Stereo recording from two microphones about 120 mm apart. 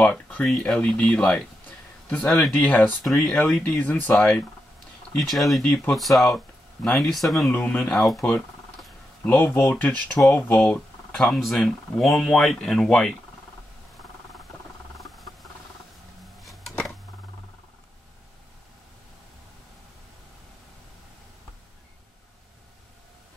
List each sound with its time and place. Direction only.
0.0 s speech: 10° left (ahead or behind)
3.1 s speech: 5° left (ahead or behind)
9.2 s speech: 15° left (ahead or behind)
16.3 s a sound: centre (ahead or behind)